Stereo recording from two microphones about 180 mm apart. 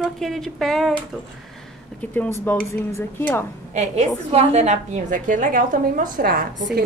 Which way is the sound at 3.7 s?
40° right (ahead or behind).